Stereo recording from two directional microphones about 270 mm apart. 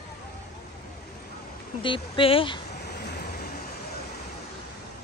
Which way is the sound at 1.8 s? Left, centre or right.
Centre.